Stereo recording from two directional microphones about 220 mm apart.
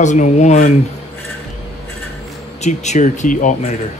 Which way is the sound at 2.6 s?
30° left (ahead or behind).